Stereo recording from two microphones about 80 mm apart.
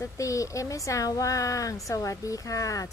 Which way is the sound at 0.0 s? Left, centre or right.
Left.